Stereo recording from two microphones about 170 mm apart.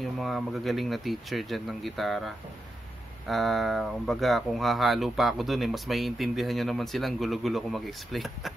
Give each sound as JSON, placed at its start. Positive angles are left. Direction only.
{"t": 0.0, "sound": "speech", "side_deg": 0}